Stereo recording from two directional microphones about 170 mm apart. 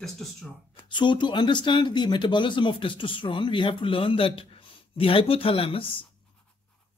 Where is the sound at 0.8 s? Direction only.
30° left (ahead or behind).